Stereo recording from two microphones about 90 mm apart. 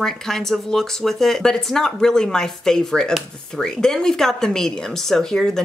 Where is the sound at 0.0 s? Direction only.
5° left (ahead or behind).